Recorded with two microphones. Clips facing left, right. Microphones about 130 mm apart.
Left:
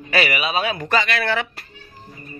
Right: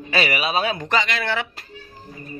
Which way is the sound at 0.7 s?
20° right (ahead or behind).